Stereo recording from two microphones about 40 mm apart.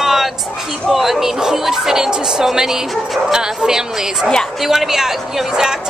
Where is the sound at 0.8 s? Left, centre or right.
Centre.